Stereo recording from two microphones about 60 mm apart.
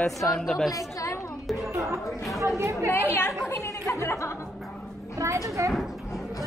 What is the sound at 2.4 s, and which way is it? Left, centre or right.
Speech, right.